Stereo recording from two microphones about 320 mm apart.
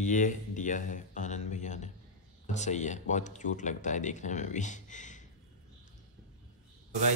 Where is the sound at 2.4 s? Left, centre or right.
Left.